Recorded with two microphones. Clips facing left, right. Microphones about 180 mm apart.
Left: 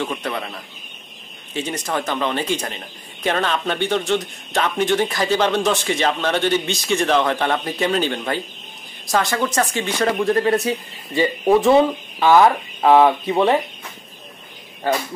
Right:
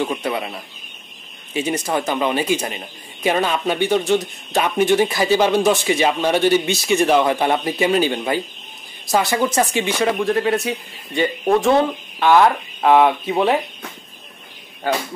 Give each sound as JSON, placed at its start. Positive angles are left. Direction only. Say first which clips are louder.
{"t": 0.0, "sound": "a man's voice", "louder": "right 3 dB", "side_deg": -10}